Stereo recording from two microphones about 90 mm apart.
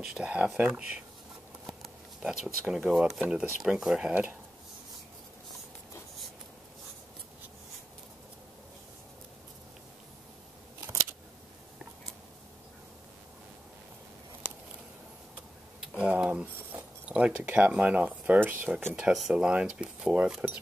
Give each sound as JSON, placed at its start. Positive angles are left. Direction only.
{"t": 0.0, "sound": "speech", "side_deg": -10}
{"t": 1.7, "sound": "a sound", "side_deg": 0}
{"t": 3.1, "sound": "speech", "side_deg": -5}
{"t": 10.8, "sound": "scissors", "side_deg": -30}
{"t": 14.4, "sound": "a sound", "side_deg": 25}
{"t": 15.8, "sound": "tick-tock", "side_deg": -10}
{"t": 17.1, "sound": "speech", "side_deg": -15}